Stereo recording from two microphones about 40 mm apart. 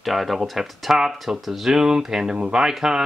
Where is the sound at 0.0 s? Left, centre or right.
Centre.